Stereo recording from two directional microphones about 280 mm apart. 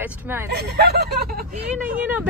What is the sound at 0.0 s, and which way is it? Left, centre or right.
Speech, centre.